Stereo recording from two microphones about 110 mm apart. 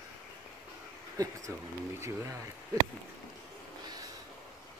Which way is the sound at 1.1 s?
30° right (ahead or behind).